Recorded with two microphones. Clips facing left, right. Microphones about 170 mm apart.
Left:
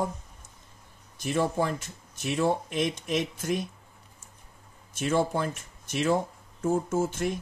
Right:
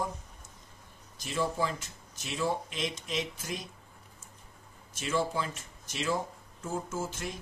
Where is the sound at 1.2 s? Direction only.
60° left (ahead or behind).